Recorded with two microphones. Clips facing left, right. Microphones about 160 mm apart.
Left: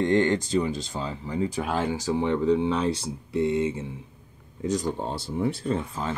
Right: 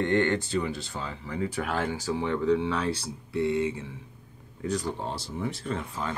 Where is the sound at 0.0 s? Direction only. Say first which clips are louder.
Left 3 dB; 20° left (ahead or behind).